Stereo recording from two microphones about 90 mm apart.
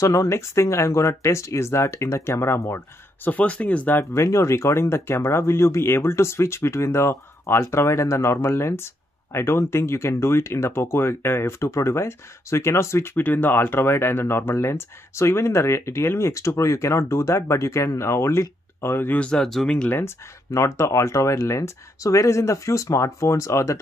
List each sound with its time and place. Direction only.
0.0 s speech: 40° left (ahead or behind)
3.3 s speech: 15° left (ahead or behind)
4.0 s speech: 35° left (ahead or behind)
19.1 s speech: 10° left (ahead or behind)
20.5 s speech: 35° left (ahead or behind)